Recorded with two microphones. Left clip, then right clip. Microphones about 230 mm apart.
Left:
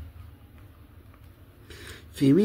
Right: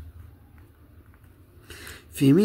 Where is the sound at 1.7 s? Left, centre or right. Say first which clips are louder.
Right 2 dB; right.